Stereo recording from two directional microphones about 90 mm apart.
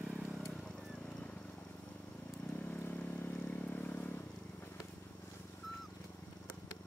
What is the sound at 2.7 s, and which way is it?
Vehicle, 20° left (ahead or behind).